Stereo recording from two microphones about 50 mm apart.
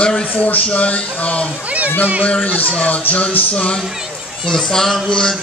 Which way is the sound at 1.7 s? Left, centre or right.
Right.